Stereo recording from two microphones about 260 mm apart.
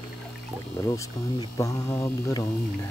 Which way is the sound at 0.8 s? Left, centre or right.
Centre.